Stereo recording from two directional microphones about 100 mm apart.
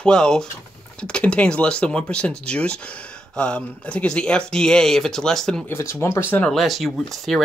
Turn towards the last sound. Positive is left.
turn(degrees=0)  # may be behind; listen again after turning